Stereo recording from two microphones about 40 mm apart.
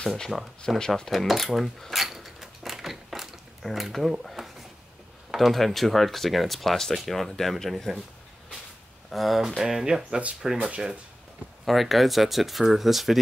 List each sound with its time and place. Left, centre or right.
0.0 s speech: centre
1.1 s a sound: centre
5.3 s speech: centre
9.1 s speech: centre
11.6 s speech: centre